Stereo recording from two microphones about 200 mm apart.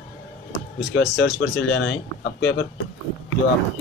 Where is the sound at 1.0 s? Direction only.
65° left (ahead or behind).